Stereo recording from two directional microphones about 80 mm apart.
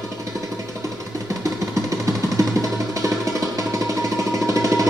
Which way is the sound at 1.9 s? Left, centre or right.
Right.